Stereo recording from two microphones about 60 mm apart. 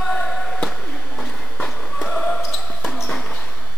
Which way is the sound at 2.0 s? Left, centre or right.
Centre.